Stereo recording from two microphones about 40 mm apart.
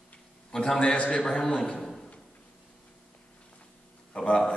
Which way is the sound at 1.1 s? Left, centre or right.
Centre.